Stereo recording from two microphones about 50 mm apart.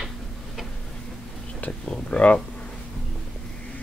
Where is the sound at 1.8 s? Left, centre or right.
Left.